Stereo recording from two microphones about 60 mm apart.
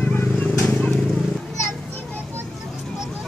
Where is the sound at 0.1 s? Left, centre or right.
Left.